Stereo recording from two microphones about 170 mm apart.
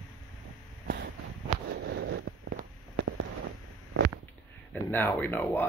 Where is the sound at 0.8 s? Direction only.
75° right (ahead or behind).